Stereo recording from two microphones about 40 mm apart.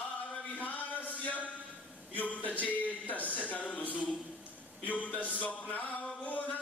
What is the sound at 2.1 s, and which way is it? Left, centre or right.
Speech, left.